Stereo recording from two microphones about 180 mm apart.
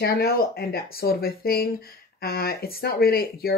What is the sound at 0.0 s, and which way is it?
Speech, 60° left (ahead or behind).